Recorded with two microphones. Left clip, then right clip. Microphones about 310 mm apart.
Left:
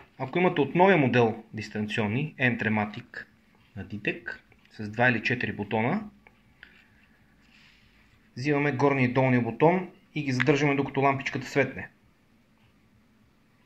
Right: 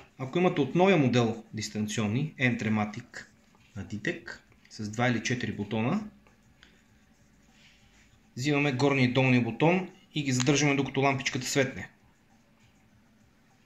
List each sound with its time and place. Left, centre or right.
0.2 s speech: centre
8.4 s speech: right